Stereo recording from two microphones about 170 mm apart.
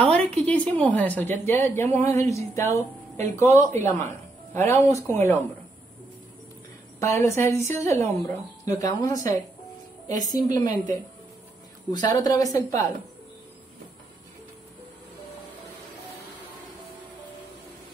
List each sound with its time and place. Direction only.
0.0 s a sound: 5° left (ahead or behind)
0.5 s a woman's voice: 10° left (ahead or behind)
7.0 s a woman's voice: 15° left (ahead or behind)